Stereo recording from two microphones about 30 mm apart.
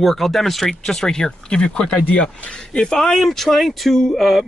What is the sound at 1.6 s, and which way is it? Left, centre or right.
Speech, left.